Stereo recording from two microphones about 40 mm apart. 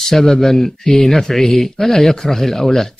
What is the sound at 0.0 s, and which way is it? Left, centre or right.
Speech, centre.